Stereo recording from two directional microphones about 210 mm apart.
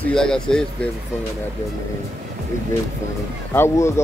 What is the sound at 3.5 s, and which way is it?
Speech, 10° left (ahead or behind).